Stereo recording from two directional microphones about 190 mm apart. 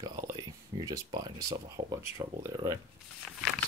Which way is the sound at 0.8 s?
20° right (ahead or behind).